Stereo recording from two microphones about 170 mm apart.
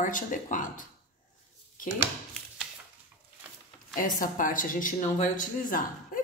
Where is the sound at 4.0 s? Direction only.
55° left (ahead or behind).